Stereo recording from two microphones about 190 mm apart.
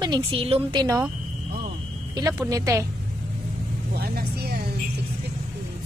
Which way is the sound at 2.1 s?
15° right (ahead or behind).